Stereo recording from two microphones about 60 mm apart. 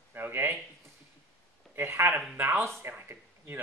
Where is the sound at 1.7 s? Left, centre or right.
Right.